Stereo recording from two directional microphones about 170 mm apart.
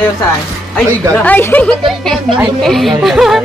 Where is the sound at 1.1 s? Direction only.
10° left (ahead or behind).